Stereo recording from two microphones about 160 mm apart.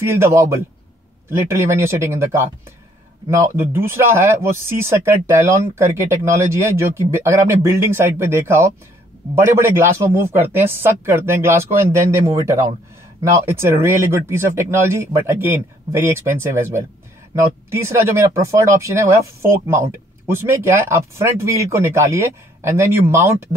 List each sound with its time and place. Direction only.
0.0 s speech: 15° right (ahead or behind)